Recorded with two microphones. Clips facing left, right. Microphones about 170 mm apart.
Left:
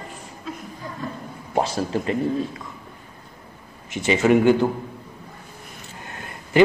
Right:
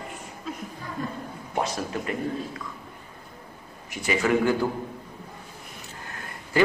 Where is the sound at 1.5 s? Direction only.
30° left (ahead or behind).